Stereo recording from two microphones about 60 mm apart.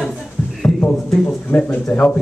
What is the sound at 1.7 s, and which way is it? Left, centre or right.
Speech, left.